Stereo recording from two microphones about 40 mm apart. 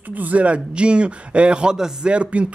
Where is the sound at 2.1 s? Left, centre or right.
Right.